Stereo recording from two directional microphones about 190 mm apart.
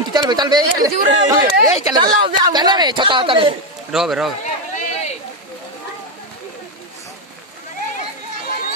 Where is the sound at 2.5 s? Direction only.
20° right (ahead or behind).